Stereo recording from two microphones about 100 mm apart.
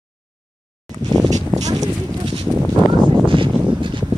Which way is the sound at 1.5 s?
40° right (ahead or behind).